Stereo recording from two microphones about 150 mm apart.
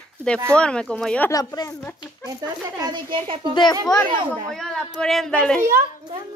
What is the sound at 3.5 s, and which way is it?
Speech, 30° left (ahead or behind).